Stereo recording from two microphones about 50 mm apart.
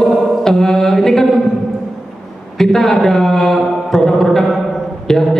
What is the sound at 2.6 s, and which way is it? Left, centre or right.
A man's voice, centre.